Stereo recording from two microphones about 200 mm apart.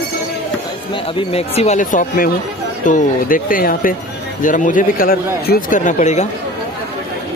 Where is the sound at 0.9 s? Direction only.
30° left (ahead or behind).